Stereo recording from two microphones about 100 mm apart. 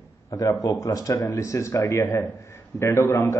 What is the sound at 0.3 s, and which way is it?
A man's voice, 35° left (ahead or behind).